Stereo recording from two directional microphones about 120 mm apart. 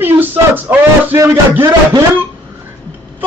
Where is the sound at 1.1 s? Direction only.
25° right (ahead or behind).